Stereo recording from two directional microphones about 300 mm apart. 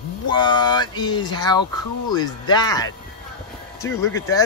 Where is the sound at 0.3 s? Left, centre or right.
Centre.